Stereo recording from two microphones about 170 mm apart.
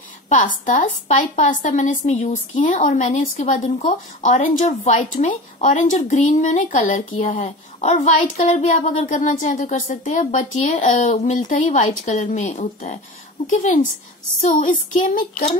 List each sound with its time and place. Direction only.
0.7 s a woman's voice: 45° left (ahead or behind)
14.4 s a woman's voice: 50° left (ahead or behind)